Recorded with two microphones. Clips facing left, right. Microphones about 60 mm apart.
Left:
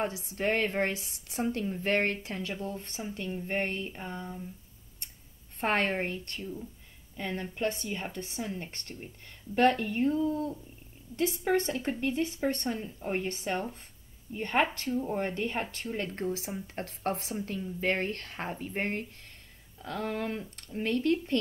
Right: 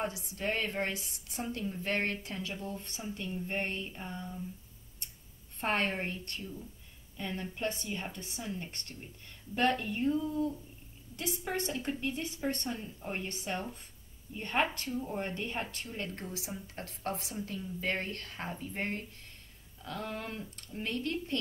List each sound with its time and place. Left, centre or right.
0.2 s a woman's voice: left
5.6 s a woman's voice: left